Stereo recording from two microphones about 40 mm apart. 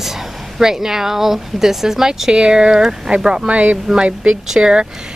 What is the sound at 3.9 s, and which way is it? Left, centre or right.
Speech, right.